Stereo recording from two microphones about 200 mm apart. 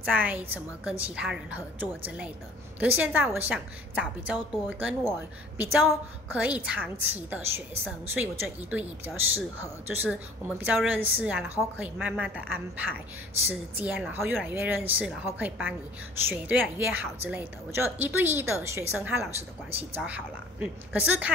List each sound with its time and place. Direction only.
0.0 s a woman's voice: 10° right (ahead or behind)
13.5 s a woman's voice: 5° right (ahead or behind)
19.7 s speech: 30° right (ahead or behind)
20.0 s a woman's voice: 5° right (ahead or behind)